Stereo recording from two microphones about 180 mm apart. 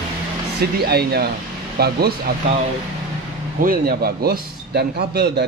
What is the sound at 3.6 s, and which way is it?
A man's voice, 50° right (ahead or behind).